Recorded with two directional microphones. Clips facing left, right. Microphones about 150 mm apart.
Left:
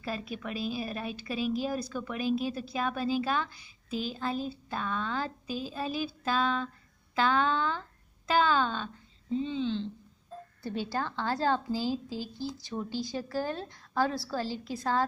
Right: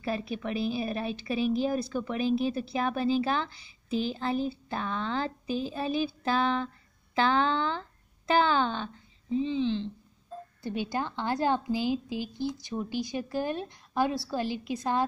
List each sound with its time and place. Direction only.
0.0 s a woman's voice: 25° right (ahead or behind)
10.6 s a woman's voice: 15° right (ahead or behind)